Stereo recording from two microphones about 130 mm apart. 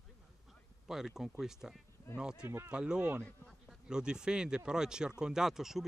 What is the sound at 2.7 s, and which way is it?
Speech, 10° right (ahead or behind).